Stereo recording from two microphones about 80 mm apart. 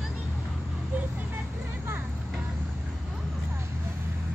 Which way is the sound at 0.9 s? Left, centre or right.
Centre.